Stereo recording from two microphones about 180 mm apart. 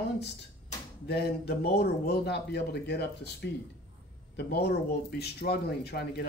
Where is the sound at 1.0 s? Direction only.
65° left (ahead or behind).